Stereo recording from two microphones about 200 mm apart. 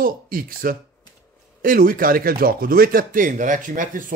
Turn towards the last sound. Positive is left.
turn(degrees=-40)  # may be behind; listen again after turning